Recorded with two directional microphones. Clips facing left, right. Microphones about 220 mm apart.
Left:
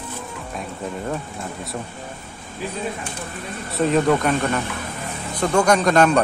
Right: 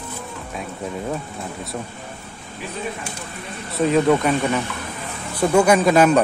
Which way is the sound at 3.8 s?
Centre (ahead or behind).